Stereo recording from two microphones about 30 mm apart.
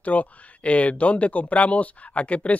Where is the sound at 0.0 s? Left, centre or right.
Left.